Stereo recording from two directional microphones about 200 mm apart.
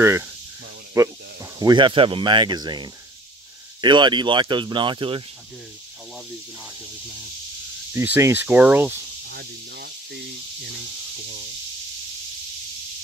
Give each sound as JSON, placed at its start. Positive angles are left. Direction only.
{"t": 0.0, "sound": "speech", "side_deg": -15}
{"t": 7.9, "sound": "speech", "side_deg": -10}
{"t": 9.2, "sound": "snake", "side_deg": -55}